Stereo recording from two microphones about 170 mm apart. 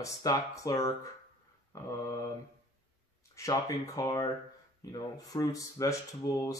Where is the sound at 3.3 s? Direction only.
20° left (ahead or behind).